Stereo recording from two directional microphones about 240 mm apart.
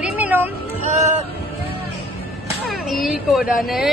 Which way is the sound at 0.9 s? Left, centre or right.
Right.